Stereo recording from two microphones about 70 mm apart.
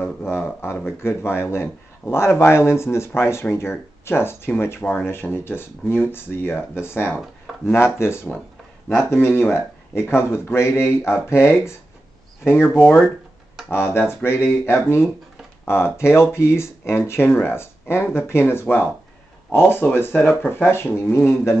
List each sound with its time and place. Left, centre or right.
0.2 s speech: left
20.7 s speech: left